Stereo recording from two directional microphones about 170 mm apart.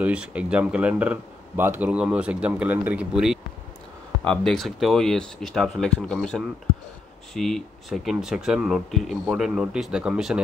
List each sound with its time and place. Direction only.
0.0 s speech: 5° right (ahead or behind)